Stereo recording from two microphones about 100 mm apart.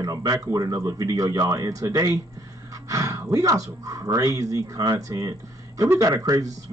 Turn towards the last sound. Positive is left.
turn(degrees=-35)  # may be behind; listen again after turning